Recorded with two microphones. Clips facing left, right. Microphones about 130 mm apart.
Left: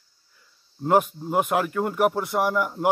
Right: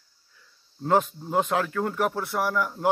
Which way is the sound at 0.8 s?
10° left (ahead or behind).